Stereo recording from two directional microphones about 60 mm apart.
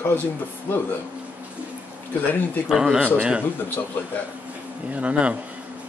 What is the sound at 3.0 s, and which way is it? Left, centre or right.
Speech, right.